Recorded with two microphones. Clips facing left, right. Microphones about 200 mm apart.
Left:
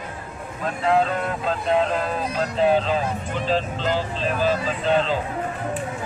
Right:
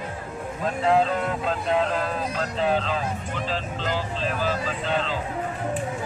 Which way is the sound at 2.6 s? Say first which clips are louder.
Left 5 dB; 15° left (ahead or behind).